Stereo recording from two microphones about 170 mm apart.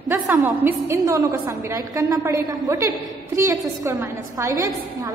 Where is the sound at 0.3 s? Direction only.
15° right (ahead or behind).